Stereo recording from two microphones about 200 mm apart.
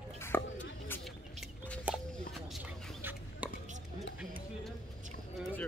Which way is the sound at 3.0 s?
10° right (ahead or behind).